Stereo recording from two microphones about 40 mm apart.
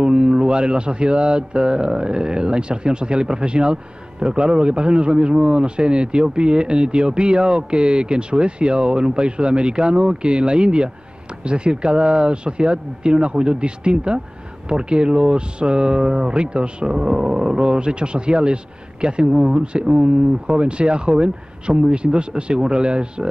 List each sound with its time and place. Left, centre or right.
0.0 s speech: right